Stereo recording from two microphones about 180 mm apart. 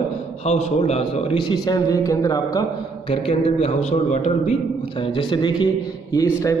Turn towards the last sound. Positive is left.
turn(degrees=20)  # may be behind; listen again after turning